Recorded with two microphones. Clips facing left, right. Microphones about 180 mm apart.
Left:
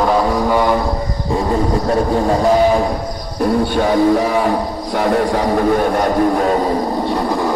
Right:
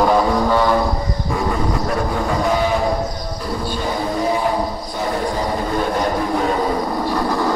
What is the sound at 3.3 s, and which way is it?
Music, 60° left (ahead or behind).